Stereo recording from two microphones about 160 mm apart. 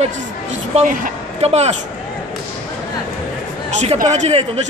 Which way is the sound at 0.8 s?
60° right (ahead or behind).